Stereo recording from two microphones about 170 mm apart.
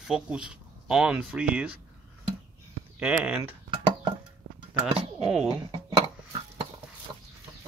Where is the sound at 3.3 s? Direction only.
5° right (ahead or behind).